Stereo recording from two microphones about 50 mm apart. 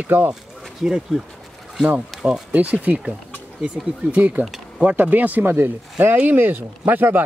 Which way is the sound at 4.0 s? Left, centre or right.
Right.